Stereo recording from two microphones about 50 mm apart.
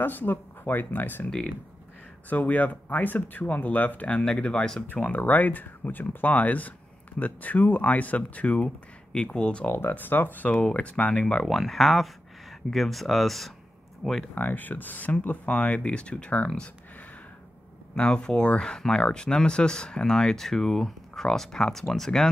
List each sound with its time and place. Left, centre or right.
0.0 s speech: left
2.2 s speech: left
4.4 s speech: left
5.1 s speech: left
9.7 s speech: left
10.7 s speech: left
11.4 s speech: centre
14.3 s speech: left
17.9 s speech: centre